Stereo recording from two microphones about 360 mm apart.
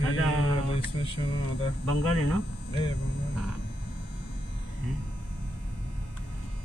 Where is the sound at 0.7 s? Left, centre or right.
Centre.